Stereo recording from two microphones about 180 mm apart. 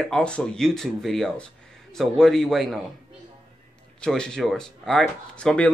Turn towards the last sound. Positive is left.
turn(degrees=5)  # may be behind; listen again after turning